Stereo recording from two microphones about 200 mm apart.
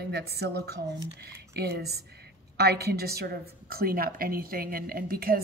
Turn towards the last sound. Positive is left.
turn(degrees=-50)  # may be behind; listen again after turning